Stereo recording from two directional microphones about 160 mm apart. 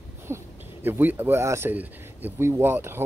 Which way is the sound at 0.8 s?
10° right (ahead or behind).